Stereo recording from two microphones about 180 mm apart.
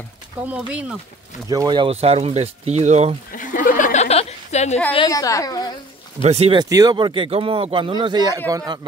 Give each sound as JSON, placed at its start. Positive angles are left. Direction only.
{"t": 0.5, "sound": "speech", "side_deg": -5}
{"t": 1.5, "sound": "speech", "side_deg": -20}
{"t": 3.3, "sound": "a sound", "side_deg": 50}
{"t": 4.9, "sound": "a woman's voice", "side_deg": 20}
{"t": 6.2, "sound": "speech", "side_deg": -35}